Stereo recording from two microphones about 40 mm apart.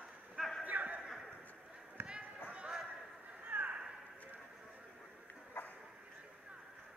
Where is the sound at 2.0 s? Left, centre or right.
Right.